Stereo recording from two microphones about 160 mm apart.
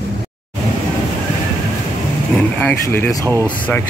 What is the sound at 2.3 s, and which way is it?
Speech, 10° left (ahead or behind).